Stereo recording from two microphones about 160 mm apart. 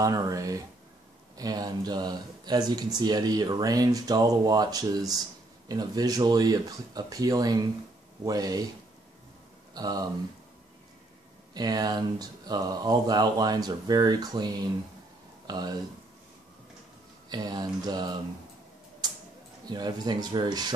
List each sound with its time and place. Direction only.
0.0 s speech: 20° right (ahead or behind)
9.8 s speech: 25° right (ahead or behind)
11.5 s speech: 25° right (ahead or behind)
17.3 s speech: 25° right (ahead or behind)
19.0 s tick-tock: 25° right (ahead or behind)
19.6 s speech: 25° right (ahead or behind)